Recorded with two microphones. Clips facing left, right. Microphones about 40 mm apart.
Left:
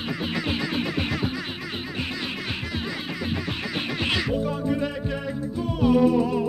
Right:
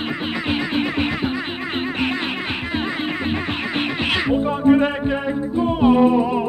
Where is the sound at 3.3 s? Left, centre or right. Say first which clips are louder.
Right 6 dB; right.